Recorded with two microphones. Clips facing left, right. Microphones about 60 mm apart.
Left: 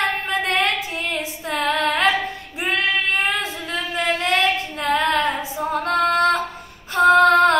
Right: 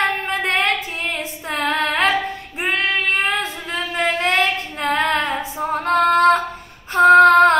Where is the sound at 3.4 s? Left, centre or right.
Right.